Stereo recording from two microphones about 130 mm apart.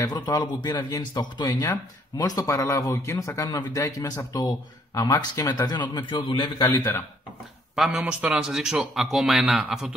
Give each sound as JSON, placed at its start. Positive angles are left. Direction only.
{"t": 0.0, "sound": "speech", "side_deg": 30}
{"t": 7.7, "sound": "a man's voice", "side_deg": 0}